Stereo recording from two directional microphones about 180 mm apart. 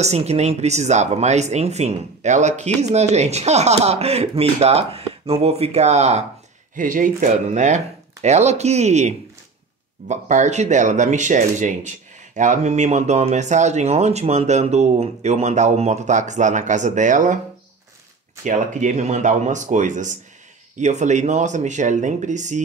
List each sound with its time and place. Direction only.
0.0 s speech: 35° right (ahead or behind)
6.7 s speech: 50° right (ahead or behind)
18.4 s speech: 45° right (ahead or behind)